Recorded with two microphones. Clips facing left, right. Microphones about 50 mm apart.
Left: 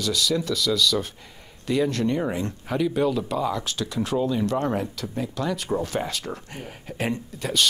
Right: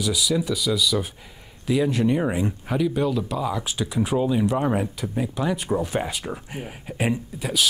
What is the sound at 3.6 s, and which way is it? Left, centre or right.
Speech, centre.